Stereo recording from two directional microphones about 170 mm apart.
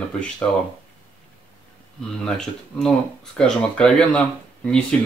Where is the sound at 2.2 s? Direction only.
5° left (ahead or behind).